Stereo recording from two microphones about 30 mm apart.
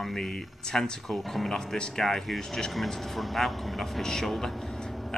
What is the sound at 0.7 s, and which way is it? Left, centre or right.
Speech, centre.